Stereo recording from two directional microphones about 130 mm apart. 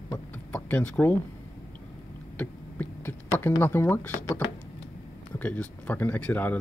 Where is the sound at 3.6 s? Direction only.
20° left (ahead or behind).